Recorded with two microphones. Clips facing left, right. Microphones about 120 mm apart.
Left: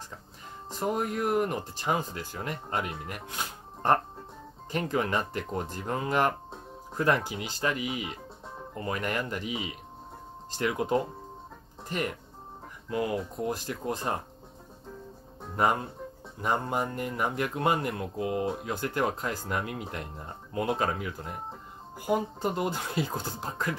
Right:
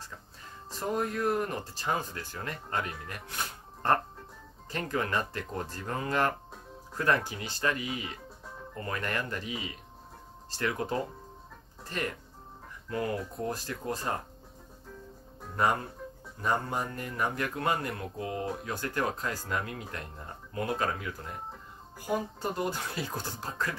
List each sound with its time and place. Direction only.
0.7 s speech: 20° left (ahead or behind)
15.5 s speech: 20° left (ahead or behind)